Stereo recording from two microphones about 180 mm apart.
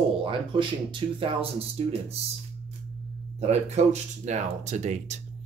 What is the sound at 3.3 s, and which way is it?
Speech, 35° right (ahead or behind).